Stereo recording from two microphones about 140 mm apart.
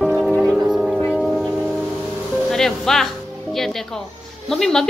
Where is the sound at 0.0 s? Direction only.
5° right (ahead or behind).